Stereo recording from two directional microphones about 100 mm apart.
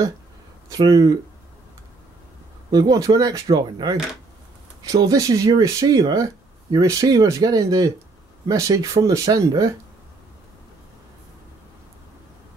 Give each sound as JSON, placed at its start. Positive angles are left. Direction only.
{"t": 0.7, "sound": "speech", "side_deg": -40}
{"t": 2.7, "sound": "speech", "side_deg": -40}